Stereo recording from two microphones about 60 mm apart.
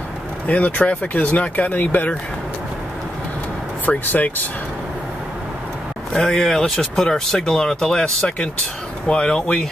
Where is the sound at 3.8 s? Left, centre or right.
Left.